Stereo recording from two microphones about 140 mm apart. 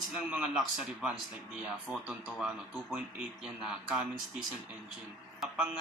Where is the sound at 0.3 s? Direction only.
5° right (ahead or behind).